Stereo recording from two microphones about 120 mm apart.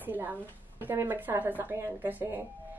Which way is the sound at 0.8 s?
20° right (ahead or behind).